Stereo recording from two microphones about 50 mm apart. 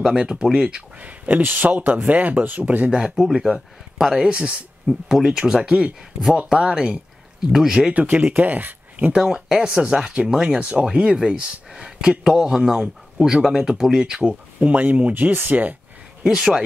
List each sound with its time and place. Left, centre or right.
0.0 s speech: centre
0.9 s speech: right
2.9 s speech: centre
4.2 s speech: centre
4.8 s speech: centre
7.9 s speech: right
9.1 s speech: centre
14.7 s speech: right
16.3 s speech: centre